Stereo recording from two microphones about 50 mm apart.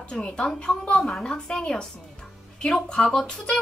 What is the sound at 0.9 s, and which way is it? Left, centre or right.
Speech, centre.